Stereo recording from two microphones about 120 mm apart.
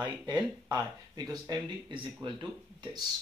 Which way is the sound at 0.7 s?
35° right (ahead or behind).